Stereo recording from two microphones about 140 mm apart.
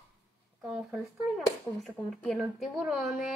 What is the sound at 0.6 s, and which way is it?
Speech, 5° right (ahead or behind).